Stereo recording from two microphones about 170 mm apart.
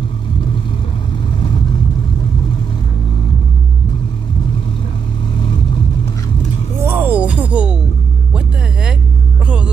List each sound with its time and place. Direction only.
6.8 s music: 10° right (ahead or behind)